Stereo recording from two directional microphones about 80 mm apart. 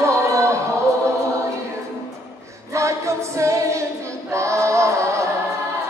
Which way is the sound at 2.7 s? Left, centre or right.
Right.